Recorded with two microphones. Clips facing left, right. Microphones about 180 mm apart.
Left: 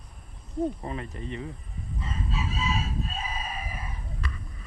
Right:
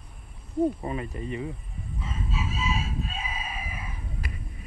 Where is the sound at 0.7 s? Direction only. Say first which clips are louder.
Right 3 dB; 5° right (ahead or behind).